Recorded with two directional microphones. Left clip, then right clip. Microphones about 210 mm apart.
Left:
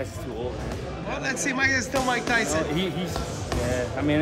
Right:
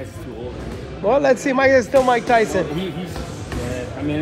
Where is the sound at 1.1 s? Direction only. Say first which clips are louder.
Right 11 dB; centre (ahead or behind).